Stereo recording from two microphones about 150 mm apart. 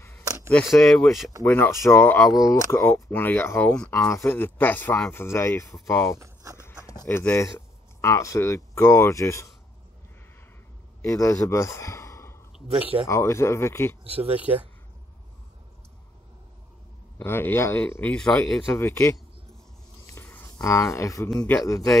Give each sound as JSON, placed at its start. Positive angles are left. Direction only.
{"t": 0.2, "sound": "a sound", "side_deg": -25}
{"t": 0.7, "sound": "speech", "side_deg": 20}
{"t": 6.1, "sound": "speech", "side_deg": -20}
{"t": 6.6, "sound": "speech", "side_deg": 20}
{"t": 11.0, "sound": "a man's voice", "side_deg": 20}
{"t": 14.0, "sound": "speech", "side_deg": -40}
{"t": 14.3, "sound": "speech", "side_deg": -10}
{"t": 17.2, "sound": "speech", "side_deg": 15}
{"t": 20.1, "sound": "a sound", "side_deg": 15}
{"t": 21.3, "sound": "speech", "side_deg": 10}